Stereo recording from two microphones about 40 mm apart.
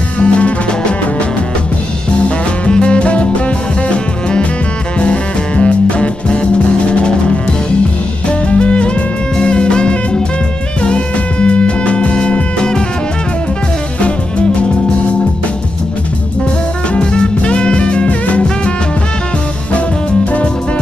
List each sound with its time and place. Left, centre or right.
0.2 s music: left
2.2 s music: left
8.3 s music: left
16.9 s music: left